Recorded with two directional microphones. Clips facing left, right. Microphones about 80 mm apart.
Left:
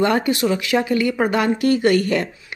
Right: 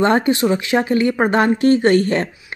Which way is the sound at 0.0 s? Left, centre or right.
Right.